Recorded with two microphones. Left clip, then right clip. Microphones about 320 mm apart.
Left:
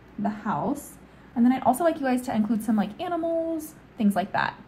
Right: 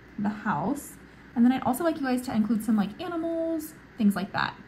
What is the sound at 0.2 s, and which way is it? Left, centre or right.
A woman's voice, centre.